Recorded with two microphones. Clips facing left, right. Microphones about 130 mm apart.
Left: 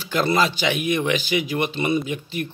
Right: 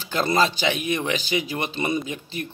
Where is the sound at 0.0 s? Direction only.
35° right (ahead or behind).